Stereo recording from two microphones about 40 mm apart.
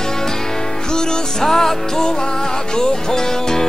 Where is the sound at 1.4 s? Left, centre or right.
Centre.